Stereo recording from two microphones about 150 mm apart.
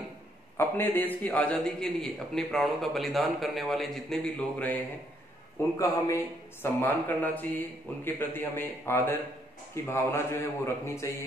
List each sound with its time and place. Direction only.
0.6 s a man's voice: 15° left (ahead or behind)